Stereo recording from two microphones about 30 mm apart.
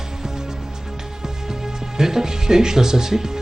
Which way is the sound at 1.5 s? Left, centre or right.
Centre.